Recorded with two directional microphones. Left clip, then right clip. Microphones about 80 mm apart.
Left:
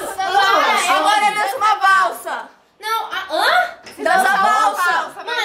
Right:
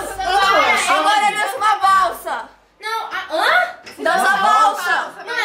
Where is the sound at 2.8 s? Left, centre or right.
Left.